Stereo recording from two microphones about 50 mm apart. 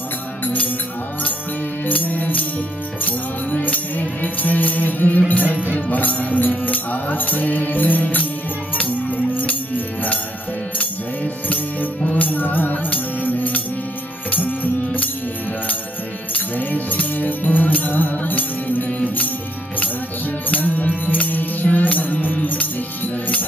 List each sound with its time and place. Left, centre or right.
1.9 s music: left
11.4 s music: left
16.3 s music: left
20.4 s music: left